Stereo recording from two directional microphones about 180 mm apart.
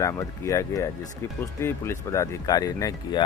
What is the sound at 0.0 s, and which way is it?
Speech, 20° left (ahead or behind).